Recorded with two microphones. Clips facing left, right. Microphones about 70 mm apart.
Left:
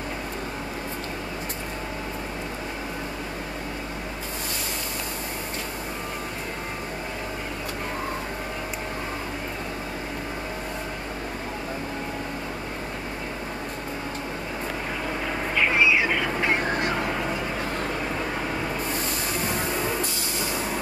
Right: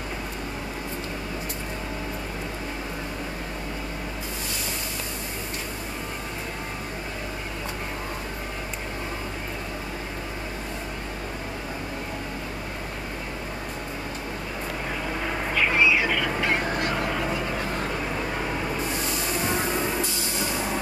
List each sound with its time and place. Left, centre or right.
15.5 s vehicle: left
16.9 s vehicle: centre